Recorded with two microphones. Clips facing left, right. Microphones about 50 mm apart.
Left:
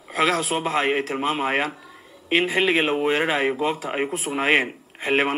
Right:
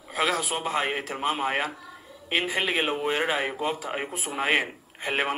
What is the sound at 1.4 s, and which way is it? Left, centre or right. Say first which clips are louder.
Speech: left 4 dB; left.